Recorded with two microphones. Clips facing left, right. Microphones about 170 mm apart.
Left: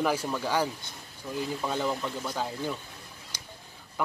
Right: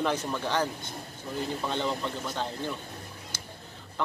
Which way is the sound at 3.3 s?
15° left (ahead or behind).